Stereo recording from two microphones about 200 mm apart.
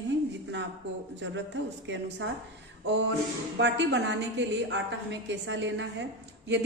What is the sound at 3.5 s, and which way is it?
A woman's voice, 60° right (ahead or behind).